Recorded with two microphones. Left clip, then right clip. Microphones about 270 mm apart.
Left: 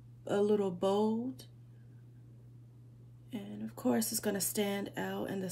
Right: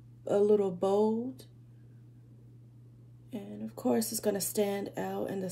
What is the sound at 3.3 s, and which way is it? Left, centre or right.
Speech, left.